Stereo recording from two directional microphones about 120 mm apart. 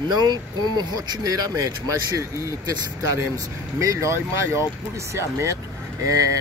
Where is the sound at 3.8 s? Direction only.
25° right (ahead or behind).